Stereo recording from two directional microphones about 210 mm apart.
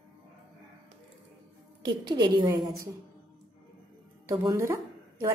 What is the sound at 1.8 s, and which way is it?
Speech, 20° right (ahead or behind).